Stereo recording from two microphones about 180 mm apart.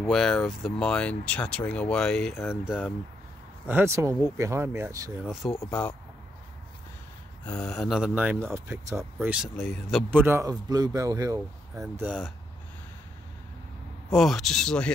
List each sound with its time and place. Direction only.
0.0 s speech: centre (ahead or behind); by 5.1 s 15° right (ahead or behind)
5.2 s speech: centre (ahead or behind)
5.6 s speech: 10° left (ahead or behind)
7.4 s speech: 5° left (ahead or behind)
10.1 s a man's voice: 15° right (ahead or behind)
11.7 s speech: 5° right (ahead or behind)
14.1 s speech: centre (ahead or behind)